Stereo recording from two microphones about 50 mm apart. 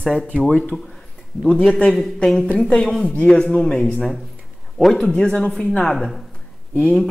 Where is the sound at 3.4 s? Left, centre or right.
Centre.